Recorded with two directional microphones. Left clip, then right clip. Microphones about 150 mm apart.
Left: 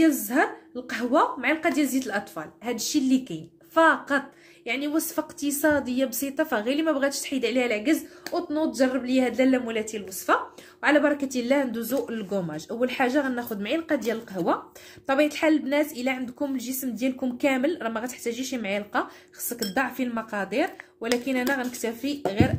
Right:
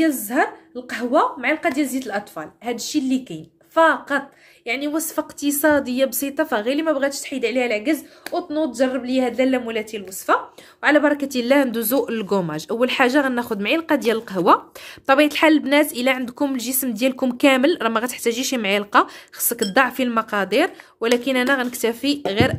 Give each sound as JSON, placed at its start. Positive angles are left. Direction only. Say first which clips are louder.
{"t": 0.0, "sound": "a woman's voice", "louder": "right 3 dB", "side_deg": -15}
{"t": 4.6, "sound": "a woman's voice", "louder": "right 4 dB", "side_deg": -25}